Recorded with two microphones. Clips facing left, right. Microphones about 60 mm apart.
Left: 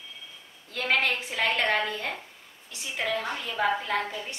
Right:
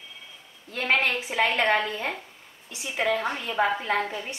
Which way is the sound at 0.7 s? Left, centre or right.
Centre.